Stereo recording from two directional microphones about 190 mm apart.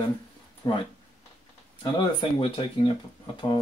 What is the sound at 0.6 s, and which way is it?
Speech, 25° left (ahead or behind).